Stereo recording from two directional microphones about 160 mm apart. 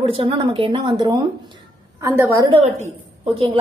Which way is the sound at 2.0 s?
15° right (ahead or behind).